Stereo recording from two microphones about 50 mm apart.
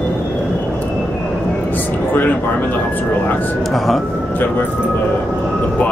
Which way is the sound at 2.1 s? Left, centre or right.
Left.